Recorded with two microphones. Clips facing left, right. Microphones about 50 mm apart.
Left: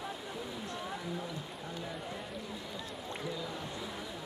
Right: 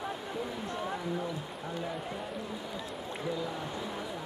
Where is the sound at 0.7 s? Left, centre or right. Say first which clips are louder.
Right 6 dB; centre.